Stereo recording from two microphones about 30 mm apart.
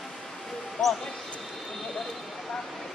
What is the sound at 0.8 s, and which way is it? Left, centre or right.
Speech, left.